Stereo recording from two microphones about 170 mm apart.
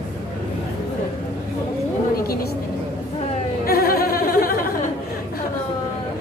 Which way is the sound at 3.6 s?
60° left (ahead or behind).